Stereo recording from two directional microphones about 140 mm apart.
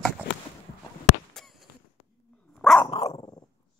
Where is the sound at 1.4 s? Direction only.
5° left (ahead or behind).